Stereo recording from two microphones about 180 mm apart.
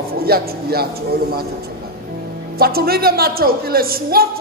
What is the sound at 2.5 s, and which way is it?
A man's voice, 60° right (ahead or behind).